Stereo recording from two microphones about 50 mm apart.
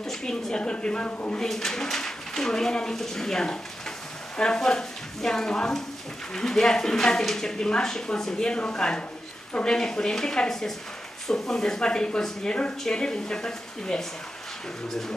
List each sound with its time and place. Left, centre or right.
0.0 s a woman's voice: centre
1.4 s a woman's voice: centre
9.8 s a woman's voice: centre